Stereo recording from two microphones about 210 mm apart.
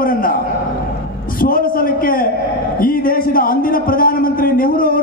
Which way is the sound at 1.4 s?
45° left (ahead or behind).